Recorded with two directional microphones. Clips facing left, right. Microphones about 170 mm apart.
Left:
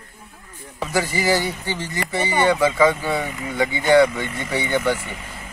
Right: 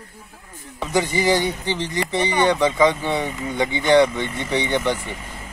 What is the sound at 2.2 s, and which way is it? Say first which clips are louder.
Speech: left 1 dB; 5° left (ahead or behind).